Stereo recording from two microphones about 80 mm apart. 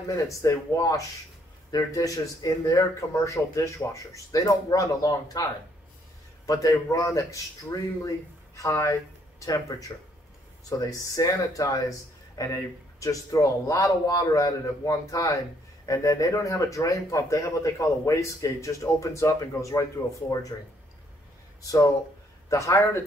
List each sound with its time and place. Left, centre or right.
0.1 s a man's voice: left
10.9 s a man's voice: left
22.5 s a man's voice: left